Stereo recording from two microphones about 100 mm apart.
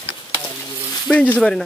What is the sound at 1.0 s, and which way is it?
Speech, 15° left (ahead or behind).